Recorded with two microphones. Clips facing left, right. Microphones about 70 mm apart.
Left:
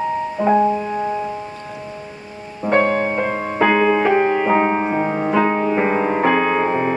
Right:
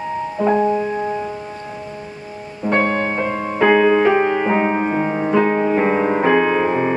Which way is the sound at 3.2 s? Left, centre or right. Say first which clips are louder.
Even; left.